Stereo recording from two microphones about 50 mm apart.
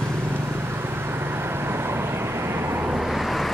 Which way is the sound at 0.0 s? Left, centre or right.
Right.